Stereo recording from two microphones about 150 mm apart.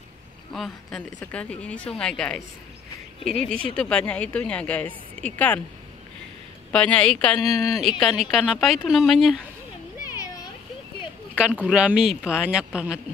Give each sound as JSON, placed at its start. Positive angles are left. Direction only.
{"t": 0.5, "sound": "speech", "side_deg": 5}
{"t": 6.7, "sound": "speech", "side_deg": 10}
{"t": 10.1, "sound": "a sound", "side_deg": 25}
{"t": 11.6, "sound": "speech", "side_deg": -5}